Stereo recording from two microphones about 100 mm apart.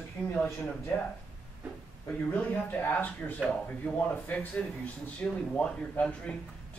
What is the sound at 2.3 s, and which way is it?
Speech, 15° left (ahead or behind).